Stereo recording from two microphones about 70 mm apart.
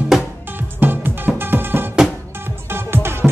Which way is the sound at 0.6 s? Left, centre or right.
Right.